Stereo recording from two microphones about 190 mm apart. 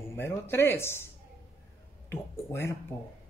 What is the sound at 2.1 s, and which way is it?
Speech, 15° left (ahead or behind).